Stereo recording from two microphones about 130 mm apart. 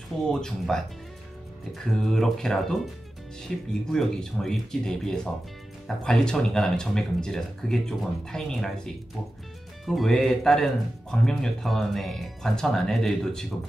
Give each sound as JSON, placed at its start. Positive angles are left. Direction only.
{"t": 0.3, "sound": "speech", "side_deg": 5}
{"t": 2.0, "sound": "speech", "side_deg": 5}